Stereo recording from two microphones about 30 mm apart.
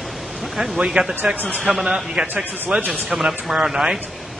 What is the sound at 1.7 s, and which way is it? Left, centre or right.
Speech, right.